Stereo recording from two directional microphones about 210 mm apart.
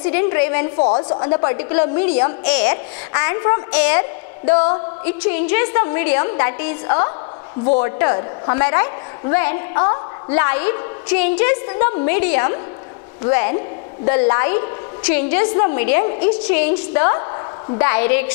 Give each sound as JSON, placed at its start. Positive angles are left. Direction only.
{"t": 0.0, "sound": "a woman's voice", "side_deg": 15}
{"t": 0.7, "sound": "a man's voice", "side_deg": 30}
{"t": 1.5, "sound": "a woman's voice", "side_deg": 10}
{"t": 4.5, "sound": "a man's voice", "side_deg": 30}
{"t": 5.0, "sound": "a woman's voice", "side_deg": 10}